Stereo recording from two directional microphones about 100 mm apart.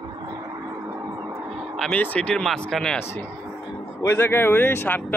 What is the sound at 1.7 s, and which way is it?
Speech, 5° left (ahead or behind).